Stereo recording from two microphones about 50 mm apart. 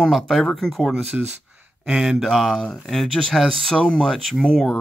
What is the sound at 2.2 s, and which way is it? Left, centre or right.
Speech, centre.